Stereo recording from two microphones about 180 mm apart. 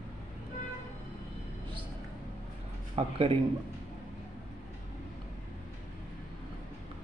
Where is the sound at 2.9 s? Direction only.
30° right (ahead or behind).